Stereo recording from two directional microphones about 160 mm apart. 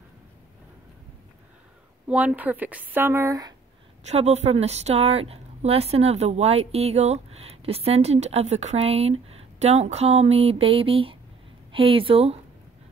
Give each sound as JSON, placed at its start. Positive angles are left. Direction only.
{"t": 2.0, "sound": "speech", "side_deg": -10}
{"t": 4.0, "sound": "a woman's voice", "side_deg": -45}